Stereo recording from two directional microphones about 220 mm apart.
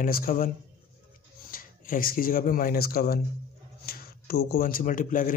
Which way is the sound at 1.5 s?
40° left (ahead or behind).